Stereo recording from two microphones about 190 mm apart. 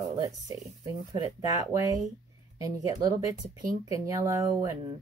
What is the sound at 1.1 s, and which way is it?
Speech, 20° right (ahead or behind).